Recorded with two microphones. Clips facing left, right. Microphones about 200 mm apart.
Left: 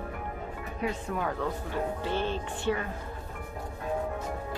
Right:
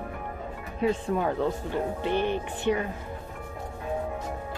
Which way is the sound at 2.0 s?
15° right (ahead or behind).